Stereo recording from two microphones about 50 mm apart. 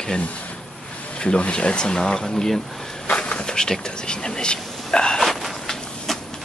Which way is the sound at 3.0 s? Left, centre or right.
Left.